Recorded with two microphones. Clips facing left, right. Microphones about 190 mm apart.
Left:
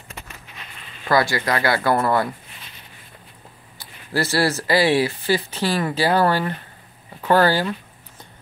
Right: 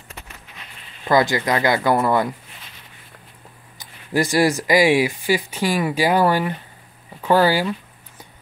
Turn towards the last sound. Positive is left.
turn(degrees=-10)  # may be behind; listen again after turning